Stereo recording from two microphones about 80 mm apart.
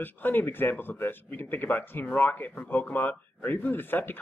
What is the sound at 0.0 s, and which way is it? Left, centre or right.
Speech, left.